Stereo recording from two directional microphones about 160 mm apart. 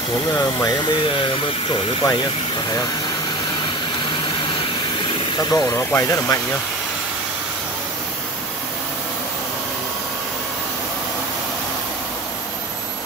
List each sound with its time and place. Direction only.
0.4 s speech: 25° left (ahead or behind)
5.4 s speech: 25° left (ahead or behind)